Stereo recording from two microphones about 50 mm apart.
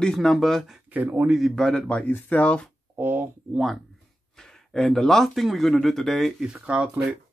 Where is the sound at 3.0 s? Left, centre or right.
Right.